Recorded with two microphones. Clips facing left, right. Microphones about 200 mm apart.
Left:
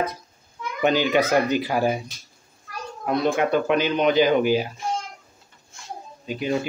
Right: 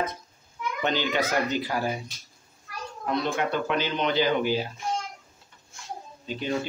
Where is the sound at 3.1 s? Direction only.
15° left (ahead or behind).